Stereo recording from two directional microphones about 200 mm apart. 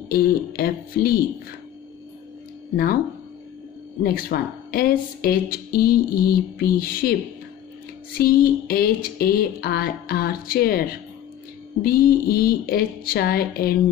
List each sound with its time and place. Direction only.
0.1 s speech: 50° left (ahead or behind)
2.7 s speech: 45° left (ahead or behind)
4.0 s speech: 50° left (ahead or behind)
8.2 s speech: 50° left (ahead or behind)